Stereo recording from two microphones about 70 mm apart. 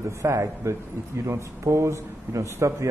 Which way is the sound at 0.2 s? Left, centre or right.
Right.